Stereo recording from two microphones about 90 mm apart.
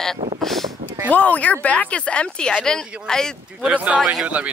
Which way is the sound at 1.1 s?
15° left (ahead or behind).